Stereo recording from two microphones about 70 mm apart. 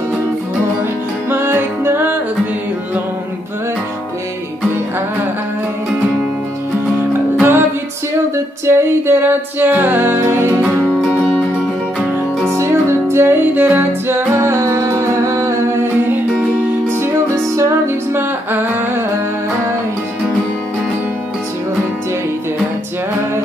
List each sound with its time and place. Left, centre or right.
1.3 s music: right
7.3 s music: right
8.6 s music: right
11.0 s music: centre
12.5 s music: right
17.6 s music: right